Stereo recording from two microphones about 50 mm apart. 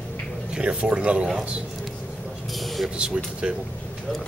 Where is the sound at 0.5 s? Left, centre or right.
Right.